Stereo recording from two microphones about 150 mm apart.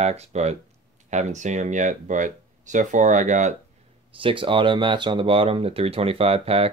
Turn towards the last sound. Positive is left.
turn(degrees=-40)  # may be behind; listen again after turning